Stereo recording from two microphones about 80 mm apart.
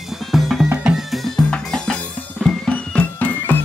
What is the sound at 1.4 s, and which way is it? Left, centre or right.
Drum, centre.